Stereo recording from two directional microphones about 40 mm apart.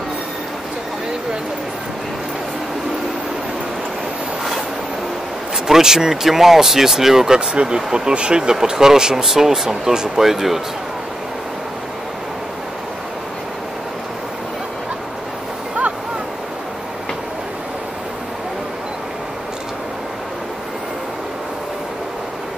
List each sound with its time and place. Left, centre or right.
5.7 s speech: centre
7.3 s speech: right
8.5 s speech: centre